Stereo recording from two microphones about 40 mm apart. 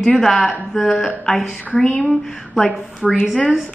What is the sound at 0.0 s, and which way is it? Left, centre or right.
A man's voice, centre.